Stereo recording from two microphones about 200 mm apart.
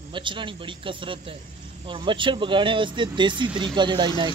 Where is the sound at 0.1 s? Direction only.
25° right (ahead or behind).